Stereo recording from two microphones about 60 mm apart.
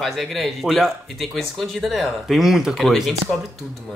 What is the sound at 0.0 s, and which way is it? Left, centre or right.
Speech, centre.